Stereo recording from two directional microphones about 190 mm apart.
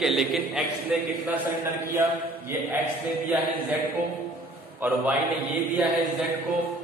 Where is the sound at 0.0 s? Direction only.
Centre (ahead or behind).